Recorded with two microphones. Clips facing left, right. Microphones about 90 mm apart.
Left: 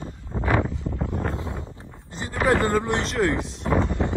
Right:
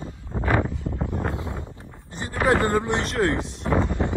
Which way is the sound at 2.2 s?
20° right (ahead or behind).